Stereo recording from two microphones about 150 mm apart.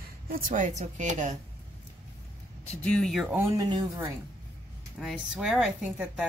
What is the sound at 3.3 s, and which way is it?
Speech, 15° right (ahead or behind).